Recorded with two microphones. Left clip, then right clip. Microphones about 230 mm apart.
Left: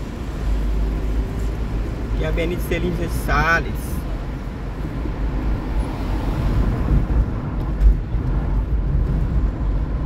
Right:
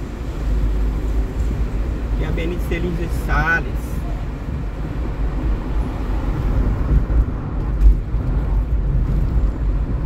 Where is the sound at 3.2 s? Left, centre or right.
Left.